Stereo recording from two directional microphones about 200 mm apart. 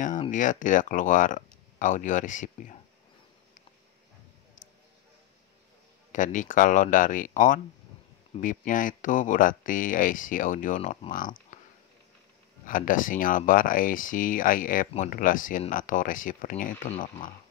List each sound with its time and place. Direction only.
0.3 s speech: 40° left (ahead or behind)
4.6 s a sound: 40° left (ahead or behind)
6.1 s speech: 40° left (ahead or behind)
12.6 s speech: 40° left (ahead or behind)